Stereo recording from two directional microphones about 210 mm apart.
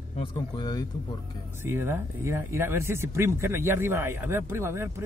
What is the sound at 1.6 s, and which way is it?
Speech, 10° right (ahead or behind).